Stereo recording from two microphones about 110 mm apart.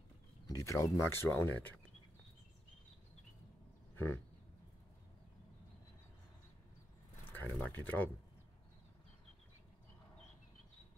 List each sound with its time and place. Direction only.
0.5 s speech: 30° left (ahead or behind)
3.9 s a sound: 20° left (ahead or behind)
7.2 s speech: 20° left (ahead or behind)